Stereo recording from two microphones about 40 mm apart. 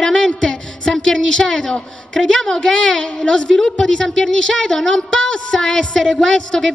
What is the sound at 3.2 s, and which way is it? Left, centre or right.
A woman's voice, centre.